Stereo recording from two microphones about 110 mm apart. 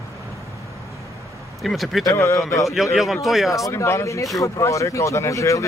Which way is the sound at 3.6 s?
25° left (ahead or behind).